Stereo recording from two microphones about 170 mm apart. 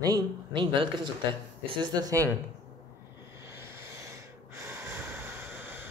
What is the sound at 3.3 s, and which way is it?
Snort, 15° right (ahead or behind).